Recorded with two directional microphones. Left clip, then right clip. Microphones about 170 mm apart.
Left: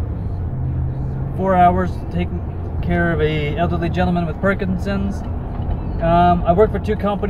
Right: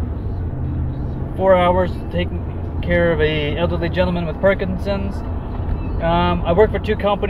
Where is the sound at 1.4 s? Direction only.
15° left (ahead or behind).